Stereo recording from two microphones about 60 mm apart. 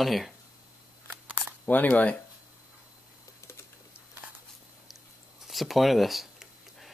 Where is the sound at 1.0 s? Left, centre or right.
Right.